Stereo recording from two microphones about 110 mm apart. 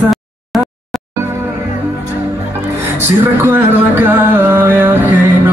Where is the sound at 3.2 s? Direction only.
20° right (ahead or behind).